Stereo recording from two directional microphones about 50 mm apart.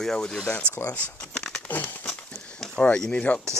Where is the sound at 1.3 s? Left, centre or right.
Centre.